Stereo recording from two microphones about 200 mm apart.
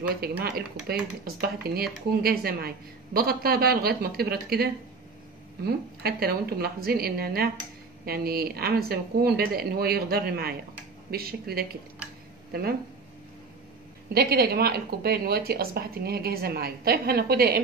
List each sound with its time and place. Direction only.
0.2 s a woman's voice: 50° right (ahead or behind)
5.7 s a woman's voice: 50° right (ahead or behind)
14.1 s a woman's voice: 50° right (ahead or behind)